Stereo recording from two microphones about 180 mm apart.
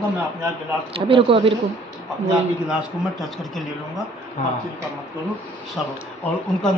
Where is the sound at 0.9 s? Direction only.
30° right (ahead or behind).